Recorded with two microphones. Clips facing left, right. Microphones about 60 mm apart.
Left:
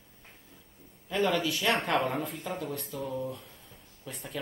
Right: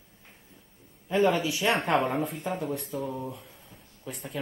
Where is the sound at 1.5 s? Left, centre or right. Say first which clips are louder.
Right 3 dB; centre.